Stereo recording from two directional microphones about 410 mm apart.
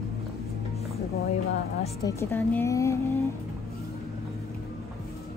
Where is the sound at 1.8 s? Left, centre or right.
Centre.